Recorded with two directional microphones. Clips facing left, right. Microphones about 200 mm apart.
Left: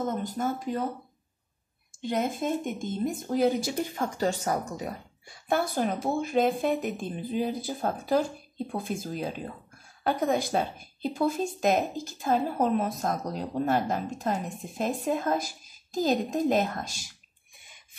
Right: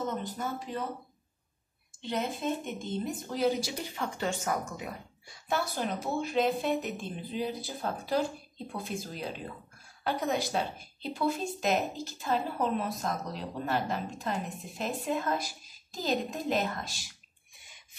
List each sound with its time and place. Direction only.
0.0 s speech: 45° left (ahead or behind)
2.0 s speech: 45° left (ahead or behind)
5.5 s speech: 50° left (ahead or behind)